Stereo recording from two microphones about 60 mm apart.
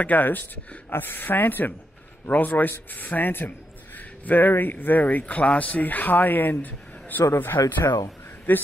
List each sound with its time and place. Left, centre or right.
0.0 s a man's voice: left
7.6 s speech: left
8.5 s speech: left